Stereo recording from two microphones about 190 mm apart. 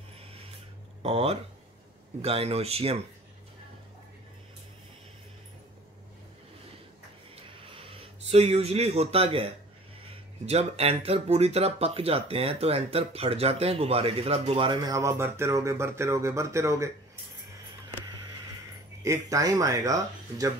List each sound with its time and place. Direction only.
1.0 s speech: 30° right (ahead or behind)
7.3 s a sound: 30° right (ahead or behind)
10.4 s speech: 35° right (ahead or behind); by 16.9 s 15° right (ahead or behind)
19.0 s speech: 15° right (ahead or behind)